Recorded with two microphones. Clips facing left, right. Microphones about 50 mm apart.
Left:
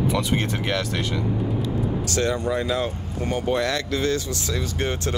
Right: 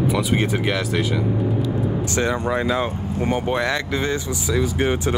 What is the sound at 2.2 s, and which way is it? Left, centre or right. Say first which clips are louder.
Speech: right 2 dB; right.